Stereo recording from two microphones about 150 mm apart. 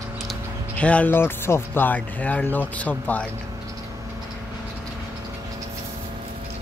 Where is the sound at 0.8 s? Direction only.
10° left (ahead or behind).